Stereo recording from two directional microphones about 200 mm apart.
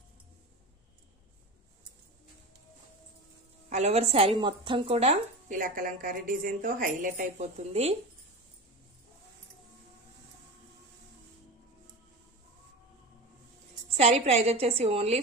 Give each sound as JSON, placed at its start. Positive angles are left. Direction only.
{"t": 3.7, "sound": "speech", "side_deg": -35}
{"t": 13.9, "sound": "speech", "side_deg": -30}